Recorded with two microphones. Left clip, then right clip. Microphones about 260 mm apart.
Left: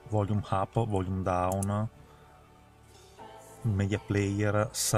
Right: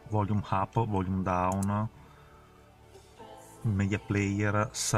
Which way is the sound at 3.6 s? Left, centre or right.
Centre.